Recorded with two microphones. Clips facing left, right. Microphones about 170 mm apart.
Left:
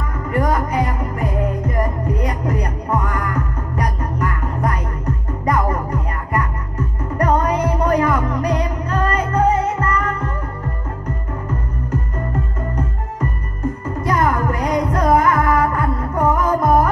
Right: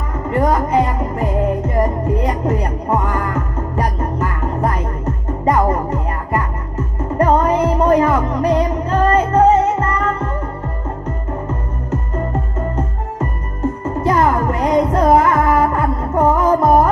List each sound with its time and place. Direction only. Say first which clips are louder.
0.3 s music: right 4 dB; 30° right (ahead or behind)
14.0 s music: right 3 dB; 25° right (ahead or behind)